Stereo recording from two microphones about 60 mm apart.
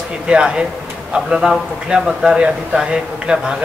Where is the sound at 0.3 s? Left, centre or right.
Centre.